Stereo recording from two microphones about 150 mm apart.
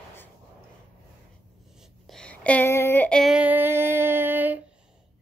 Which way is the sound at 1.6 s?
Centre (ahead or behind).